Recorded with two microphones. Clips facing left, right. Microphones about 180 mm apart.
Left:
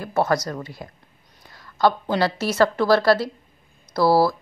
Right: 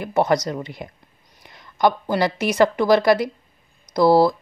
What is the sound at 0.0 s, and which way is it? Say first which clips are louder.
A woman's voice: right 2 dB; 20° right (ahead or behind).